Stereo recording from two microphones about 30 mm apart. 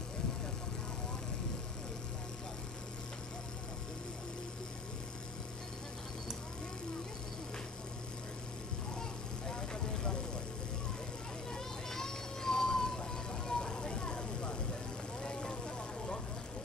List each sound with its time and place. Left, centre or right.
9.5 s vehicle: left
11.5 s vehicle: centre